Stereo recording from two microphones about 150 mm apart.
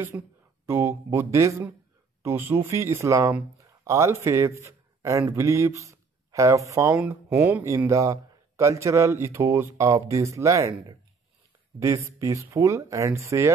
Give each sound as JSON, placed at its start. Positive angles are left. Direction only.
{"t": 0.1, "sound": "a man's voice", "side_deg": -15}
{"t": 12.2, "sound": "a man's voice", "side_deg": -20}